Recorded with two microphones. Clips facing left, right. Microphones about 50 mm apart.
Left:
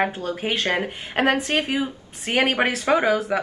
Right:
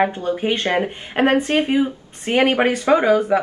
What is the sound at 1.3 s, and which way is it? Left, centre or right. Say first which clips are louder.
Speech: right 5 dB; right.